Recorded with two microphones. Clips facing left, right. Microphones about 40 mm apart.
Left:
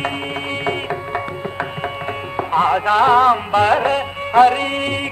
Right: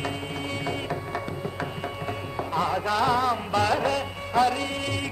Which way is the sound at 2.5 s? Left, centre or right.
Left.